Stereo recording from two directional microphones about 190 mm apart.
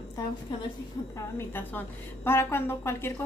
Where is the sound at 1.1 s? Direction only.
10° left (ahead or behind).